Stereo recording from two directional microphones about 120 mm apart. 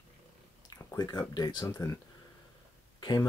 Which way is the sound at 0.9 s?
35° left (ahead or behind).